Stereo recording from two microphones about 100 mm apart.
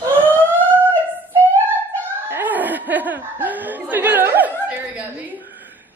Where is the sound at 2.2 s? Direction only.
20° right (ahead or behind).